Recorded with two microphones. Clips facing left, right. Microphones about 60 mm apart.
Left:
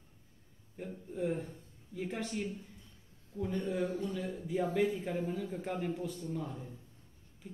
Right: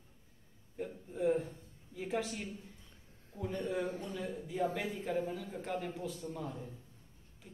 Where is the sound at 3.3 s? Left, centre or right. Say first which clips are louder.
Left 3 dB; right.